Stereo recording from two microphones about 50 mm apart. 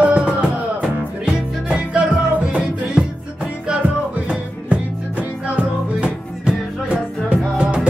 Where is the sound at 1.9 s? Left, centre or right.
Centre.